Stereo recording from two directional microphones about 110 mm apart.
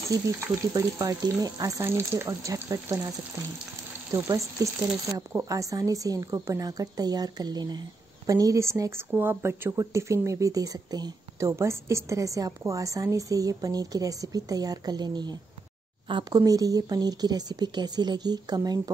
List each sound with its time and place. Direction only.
0.4 s speech: 30° right (ahead or behind)
1.9 s speech: 20° right (ahead or behind)
4.1 s speech: 30° right (ahead or behind)
16.4 s speech: 35° right (ahead or behind)